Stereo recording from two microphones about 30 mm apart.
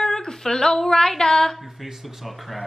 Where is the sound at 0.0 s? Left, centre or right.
Centre.